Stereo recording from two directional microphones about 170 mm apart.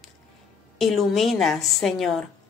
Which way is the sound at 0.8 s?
Centre (ahead or behind).